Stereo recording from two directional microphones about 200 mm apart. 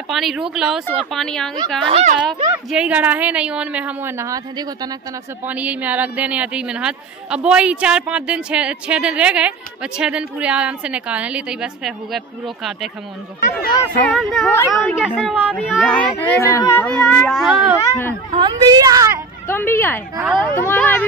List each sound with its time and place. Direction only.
0.1 s speech: centre (ahead or behind)
1.9 s speech: 30° right (ahead or behind)
2.5 s a woman's voice: 5° right (ahead or behind)
13.4 s speech: 40° left (ahead or behind)
14.0 s speech: centre (ahead or behind)
16.3 s speech: 15° left (ahead or behind)
18.3 s a woman's voice: 20° right (ahead or behind)
19.4 s speech: 10° left (ahead or behind)